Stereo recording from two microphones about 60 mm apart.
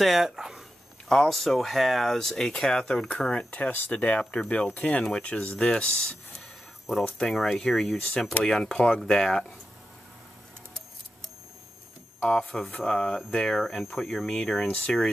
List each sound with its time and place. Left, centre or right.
0.0 s speech: centre
1.0 s speech: centre
3.4 s speech: left
7.2 s speech: centre
12.2 s speech: centre